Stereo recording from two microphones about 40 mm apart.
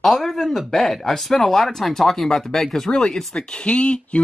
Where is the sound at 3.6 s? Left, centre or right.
Left.